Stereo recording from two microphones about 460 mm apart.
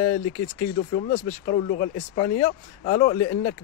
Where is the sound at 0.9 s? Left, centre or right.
Centre.